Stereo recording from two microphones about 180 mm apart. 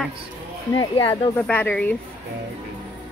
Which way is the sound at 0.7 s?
25° left (ahead or behind).